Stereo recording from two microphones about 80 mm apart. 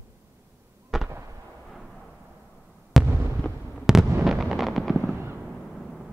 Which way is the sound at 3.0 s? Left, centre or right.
Centre.